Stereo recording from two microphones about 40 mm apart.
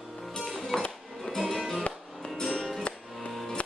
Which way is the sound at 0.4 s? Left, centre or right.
Centre.